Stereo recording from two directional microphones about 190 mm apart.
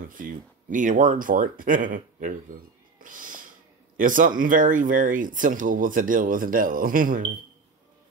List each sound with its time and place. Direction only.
0.0 s speech: 45° right (ahead or behind)